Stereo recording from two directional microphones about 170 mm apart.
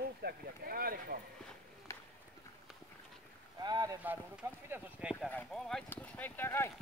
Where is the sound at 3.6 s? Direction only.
25° right (ahead or behind).